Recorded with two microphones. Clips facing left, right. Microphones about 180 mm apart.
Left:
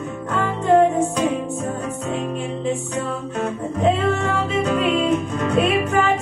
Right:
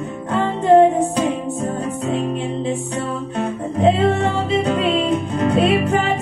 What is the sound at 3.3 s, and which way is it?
Music, 30° right (ahead or behind).